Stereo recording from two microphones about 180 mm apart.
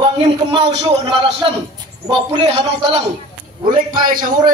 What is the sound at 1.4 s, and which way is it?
A man's voice, 25° right (ahead or behind).